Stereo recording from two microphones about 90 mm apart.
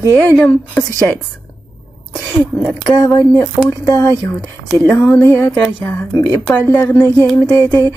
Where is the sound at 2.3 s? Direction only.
5° left (ahead or behind).